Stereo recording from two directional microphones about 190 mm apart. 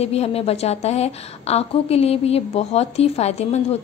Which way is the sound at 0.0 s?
35° left (ahead or behind).